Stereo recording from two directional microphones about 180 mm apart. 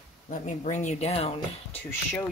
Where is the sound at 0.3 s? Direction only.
45° left (ahead or behind).